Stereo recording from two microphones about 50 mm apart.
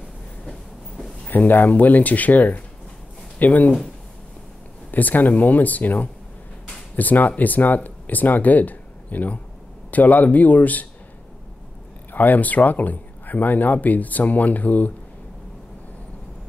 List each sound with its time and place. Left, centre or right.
1.2 s speech: left
4.9 s speech: left
12.1 s speech: left